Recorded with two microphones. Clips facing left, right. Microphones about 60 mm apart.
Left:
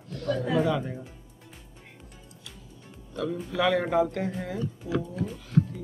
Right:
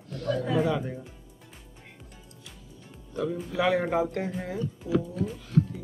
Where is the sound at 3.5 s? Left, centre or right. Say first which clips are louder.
Left 1 dB; right; by 4.6 s centre.